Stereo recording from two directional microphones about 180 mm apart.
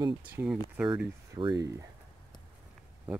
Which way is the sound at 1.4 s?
20° right (ahead or behind).